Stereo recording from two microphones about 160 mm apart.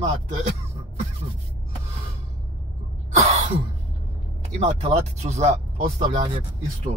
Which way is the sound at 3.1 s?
40° right (ahead or behind).